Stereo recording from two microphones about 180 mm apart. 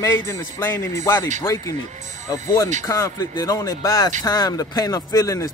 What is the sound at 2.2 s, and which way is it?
Speech, 20° left (ahead or behind).